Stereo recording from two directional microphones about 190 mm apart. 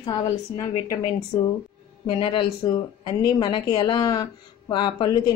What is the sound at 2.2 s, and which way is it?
Speech, 25° left (ahead or behind).